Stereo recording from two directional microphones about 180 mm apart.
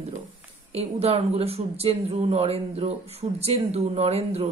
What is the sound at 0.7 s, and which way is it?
Speech, 35° right (ahead or behind).